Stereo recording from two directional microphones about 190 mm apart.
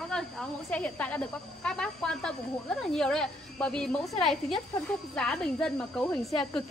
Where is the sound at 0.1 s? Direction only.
5° left (ahead or behind).